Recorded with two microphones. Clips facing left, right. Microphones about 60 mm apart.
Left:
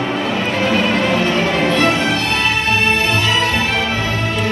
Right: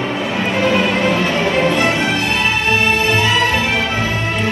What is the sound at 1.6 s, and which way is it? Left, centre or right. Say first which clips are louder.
Music: even; right.